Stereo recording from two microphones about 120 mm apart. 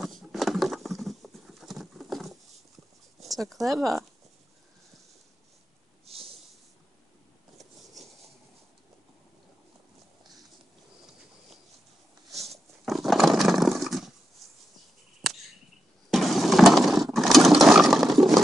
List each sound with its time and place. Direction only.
0.0 s clip-clop: centre (ahead or behind)
3.2 s speech: centre (ahead or behind)
6.1 s snort: 55° right (ahead or behind)
12.8 s a sound: centre (ahead or behind)
16.1 s vehicle: centre (ahead or behind)